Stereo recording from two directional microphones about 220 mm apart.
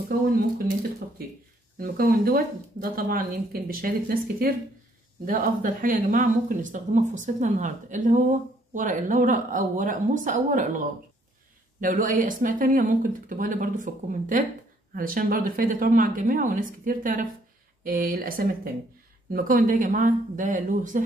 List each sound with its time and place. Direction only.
1.8 s speech: 40° right (ahead or behind)
11.8 s speech: 35° right (ahead or behind)